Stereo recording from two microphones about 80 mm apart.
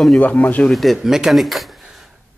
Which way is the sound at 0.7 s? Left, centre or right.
Centre.